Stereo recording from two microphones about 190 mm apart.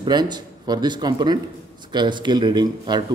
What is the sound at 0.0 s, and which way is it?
A man's voice, 20° right (ahead or behind).